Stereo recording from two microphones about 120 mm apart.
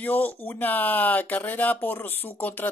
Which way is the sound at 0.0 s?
15° left (ahead or behind).